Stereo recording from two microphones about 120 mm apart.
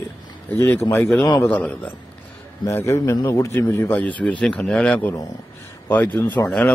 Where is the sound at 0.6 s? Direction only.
20° left (ahead or behind).